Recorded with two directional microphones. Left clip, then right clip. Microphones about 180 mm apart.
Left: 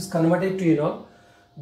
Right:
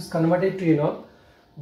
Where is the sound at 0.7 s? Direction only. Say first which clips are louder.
Left 1 dB; 20° right (ahead or behind).